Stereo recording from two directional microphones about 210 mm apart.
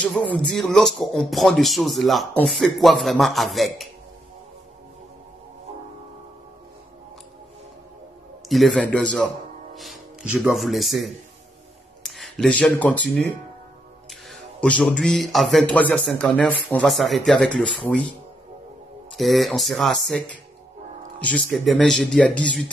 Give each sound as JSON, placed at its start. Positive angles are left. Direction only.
{"t": 0.0, "sound": "a man's voice", "side_deg": 5}
{"t": 8.5, "sound": "a man's voice", "side_deg": 0}
{"t": 14.6, "sound": "a man's voice", "side_deg": 5}
{"t": 19.1, "sound": "a man's voice", "side_deg": 0}